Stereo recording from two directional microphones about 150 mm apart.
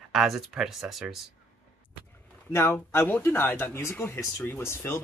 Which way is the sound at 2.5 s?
15° left (ahead or behind).